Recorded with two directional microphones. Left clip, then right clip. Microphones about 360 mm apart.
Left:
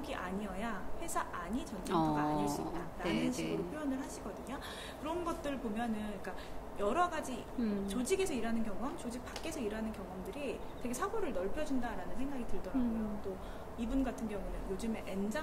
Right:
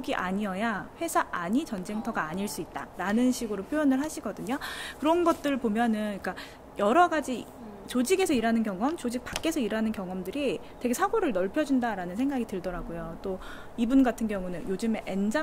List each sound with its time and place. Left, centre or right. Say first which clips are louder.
0.0 s a woman's voice: right 10 dB; right
13.7 s a woman's voice: right 13 dB; right